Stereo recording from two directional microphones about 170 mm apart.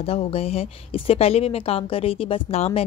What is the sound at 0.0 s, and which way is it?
A woman's voice, 35° left (ahead or behind).